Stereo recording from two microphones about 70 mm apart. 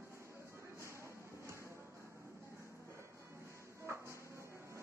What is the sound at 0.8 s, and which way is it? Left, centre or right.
Music, right.